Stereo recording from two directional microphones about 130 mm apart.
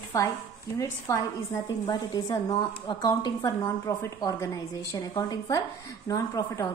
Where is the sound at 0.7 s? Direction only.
25° left (ahead or behind).